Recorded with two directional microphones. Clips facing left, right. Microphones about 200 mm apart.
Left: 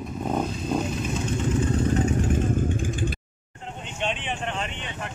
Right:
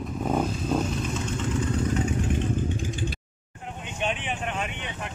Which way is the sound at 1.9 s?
50° left (ahead or behind).